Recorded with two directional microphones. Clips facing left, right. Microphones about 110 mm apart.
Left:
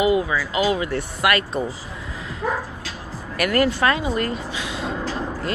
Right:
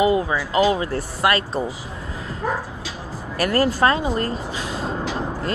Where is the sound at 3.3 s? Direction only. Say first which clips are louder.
Right 1 dB; 30° right (ahead or behind).